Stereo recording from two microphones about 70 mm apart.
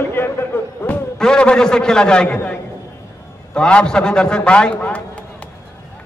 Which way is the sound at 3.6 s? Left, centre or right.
Centre.